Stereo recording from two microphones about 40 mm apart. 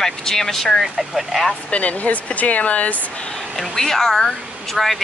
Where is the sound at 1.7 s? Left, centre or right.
Left.